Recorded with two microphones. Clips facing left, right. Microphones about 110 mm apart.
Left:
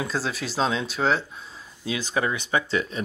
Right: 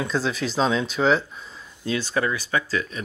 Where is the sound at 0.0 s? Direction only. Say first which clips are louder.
Right 3 dB; 5° left (ahead or behind).